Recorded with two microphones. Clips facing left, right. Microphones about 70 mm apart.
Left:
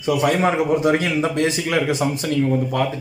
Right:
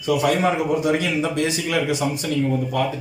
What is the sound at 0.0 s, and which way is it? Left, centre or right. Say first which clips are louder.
A man's voice: left 1 dB; left.